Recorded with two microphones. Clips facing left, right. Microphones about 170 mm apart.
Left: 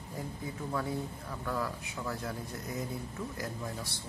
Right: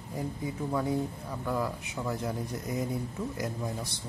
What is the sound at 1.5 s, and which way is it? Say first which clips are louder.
Speech: right 4 dB; 20° right (ahead or behind).